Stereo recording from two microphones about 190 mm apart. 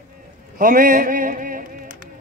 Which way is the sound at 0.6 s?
45° right (ahead or behind).